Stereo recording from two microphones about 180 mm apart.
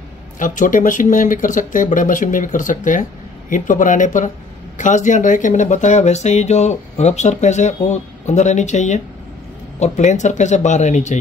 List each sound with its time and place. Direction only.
0.4 s speech: 45° left (ahead or behind)